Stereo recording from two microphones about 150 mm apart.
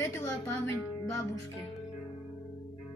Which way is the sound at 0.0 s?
20° left (ahead or behind).